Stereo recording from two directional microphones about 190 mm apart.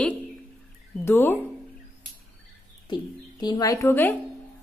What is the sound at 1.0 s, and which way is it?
Speech, 10° left (ahead or behind).